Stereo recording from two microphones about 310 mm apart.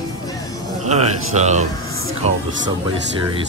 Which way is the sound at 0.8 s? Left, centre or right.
Right.